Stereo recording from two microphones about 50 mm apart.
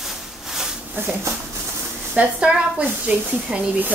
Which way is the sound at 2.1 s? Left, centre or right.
Right.